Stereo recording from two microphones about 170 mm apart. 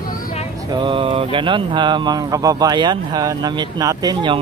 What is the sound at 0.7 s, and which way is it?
Speech, 30° right (ahead or behind).